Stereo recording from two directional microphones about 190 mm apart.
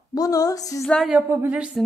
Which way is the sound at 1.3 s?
10° right (ahead or behind).